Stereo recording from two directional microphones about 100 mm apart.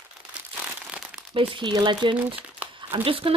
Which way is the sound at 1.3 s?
55° right (ahead or behind).